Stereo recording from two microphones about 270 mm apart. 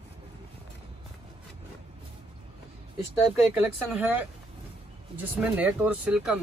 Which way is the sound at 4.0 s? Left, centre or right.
Centre.